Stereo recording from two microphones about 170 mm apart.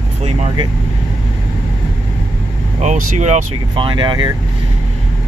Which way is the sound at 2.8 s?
45° right (ahead or behind).